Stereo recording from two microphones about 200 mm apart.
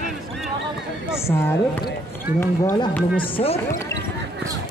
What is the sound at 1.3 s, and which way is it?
Speech, 10° left (ahead or behind).